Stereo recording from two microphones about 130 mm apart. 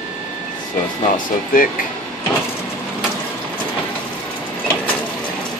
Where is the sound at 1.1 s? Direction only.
90° left.